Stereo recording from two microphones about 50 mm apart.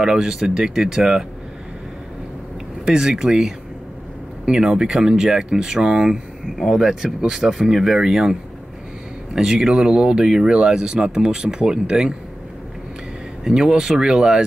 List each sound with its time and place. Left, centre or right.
0.0 s speech: centre
2.8 s speech: centre
13.4 s speech: centre